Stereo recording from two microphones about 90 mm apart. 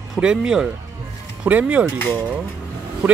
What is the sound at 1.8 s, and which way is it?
Speech, 20° left (ahead or behind).